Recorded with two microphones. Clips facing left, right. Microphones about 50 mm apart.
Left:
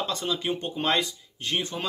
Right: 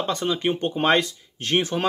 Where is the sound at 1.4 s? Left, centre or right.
Right.